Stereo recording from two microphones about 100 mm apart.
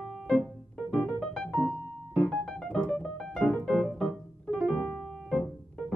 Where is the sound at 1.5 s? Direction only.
15° right (ahead or behind).